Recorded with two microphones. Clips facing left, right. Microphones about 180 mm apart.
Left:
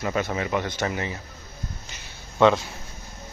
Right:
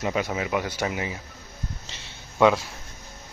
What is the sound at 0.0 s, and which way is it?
Speech, 10° right (ahead or behind).